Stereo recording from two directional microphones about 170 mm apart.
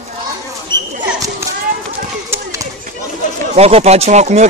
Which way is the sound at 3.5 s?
35° right (ahead or behind).